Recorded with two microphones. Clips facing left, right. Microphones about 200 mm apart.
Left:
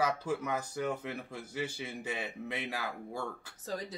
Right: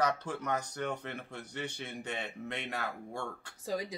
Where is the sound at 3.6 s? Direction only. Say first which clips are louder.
Right 3 dB; 10° right (ahead or behind).